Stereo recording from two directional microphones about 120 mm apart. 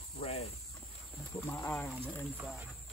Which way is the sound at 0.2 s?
60° left (ahead or behind).